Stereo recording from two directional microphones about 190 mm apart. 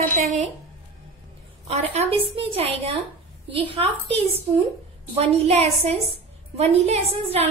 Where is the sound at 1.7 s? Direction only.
35° right (ahead or behind).